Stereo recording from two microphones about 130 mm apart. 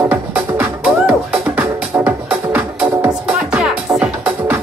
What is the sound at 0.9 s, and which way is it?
Music, 10° right (ahead or behind).